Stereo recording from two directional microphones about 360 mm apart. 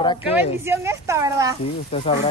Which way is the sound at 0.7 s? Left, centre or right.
Centre.